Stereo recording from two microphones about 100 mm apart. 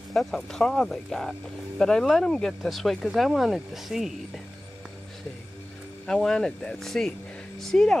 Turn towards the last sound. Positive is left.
turn(degrees=5)  # may be behind; listen again after turning